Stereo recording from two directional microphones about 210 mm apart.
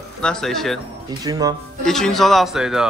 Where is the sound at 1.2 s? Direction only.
15° right (ahead or behind).